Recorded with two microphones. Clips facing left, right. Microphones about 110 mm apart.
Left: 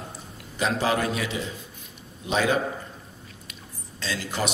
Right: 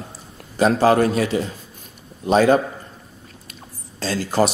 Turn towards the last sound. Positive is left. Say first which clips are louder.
# right 9 dB
turn(degrees=-40)  # may be behind; listen again after turning